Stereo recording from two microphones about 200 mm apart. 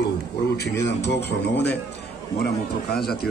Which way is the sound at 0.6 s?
60° left (ahead or behind).